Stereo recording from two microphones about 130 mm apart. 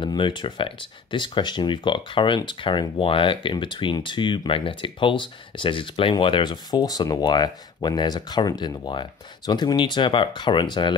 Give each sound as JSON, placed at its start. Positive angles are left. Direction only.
{"t": 0.0, "sound": "speech", "side_deg": 40}